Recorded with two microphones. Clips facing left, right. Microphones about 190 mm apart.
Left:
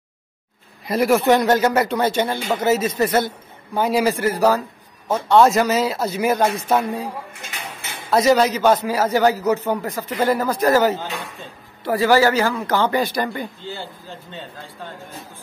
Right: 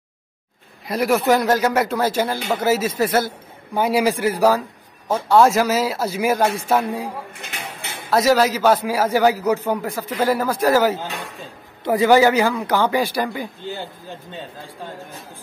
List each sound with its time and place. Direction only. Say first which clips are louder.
0.8 s a man's voice: left 2 dB; centre (ahead or behind)
8.1 s a man's voice: left 1 dB; centre (ahead or behind)